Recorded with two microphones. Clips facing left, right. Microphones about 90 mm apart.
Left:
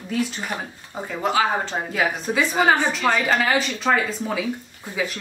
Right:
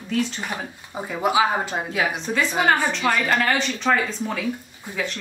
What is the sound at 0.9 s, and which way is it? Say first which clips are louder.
A woman's voice: right 1 dB; 10° right (ahead or behind).